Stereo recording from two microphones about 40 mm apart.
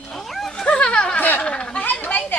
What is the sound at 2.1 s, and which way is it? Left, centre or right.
Chatter, left.